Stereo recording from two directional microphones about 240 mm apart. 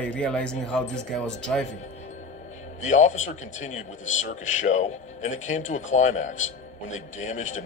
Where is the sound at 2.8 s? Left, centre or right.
Left.